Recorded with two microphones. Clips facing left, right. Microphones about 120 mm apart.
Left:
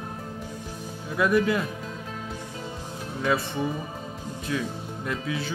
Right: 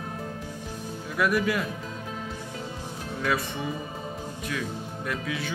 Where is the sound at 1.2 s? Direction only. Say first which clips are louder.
Left 3 dB; 25° left (ahead or behind).